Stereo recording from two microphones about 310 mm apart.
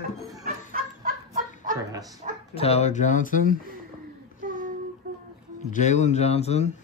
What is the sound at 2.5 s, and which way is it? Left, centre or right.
Speech, centre.